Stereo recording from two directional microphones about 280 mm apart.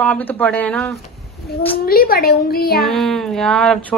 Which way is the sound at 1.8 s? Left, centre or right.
Left.